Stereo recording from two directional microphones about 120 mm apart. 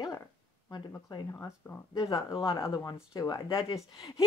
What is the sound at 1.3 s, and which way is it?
A woman's voice, 20° left (ahead or behind).